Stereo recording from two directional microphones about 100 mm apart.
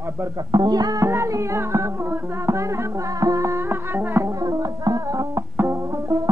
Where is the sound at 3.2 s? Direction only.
30° right (ahead or behind).